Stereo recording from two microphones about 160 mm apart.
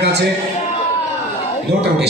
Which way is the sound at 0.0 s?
90° right.